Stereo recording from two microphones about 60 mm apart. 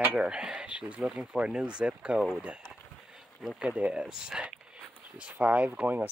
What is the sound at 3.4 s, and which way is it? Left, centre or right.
Speech, centre.